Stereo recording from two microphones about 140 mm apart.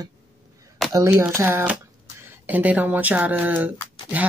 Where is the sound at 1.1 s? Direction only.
15° right (ahead or behind).